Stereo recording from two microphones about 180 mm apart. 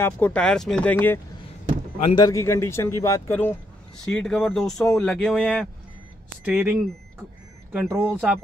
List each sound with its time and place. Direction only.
0.0 s speech: 10° left (ahead or behind)
6.4 s speech: 10° right (ahead or behind)
7.7 s speech: centre (ahead or behind)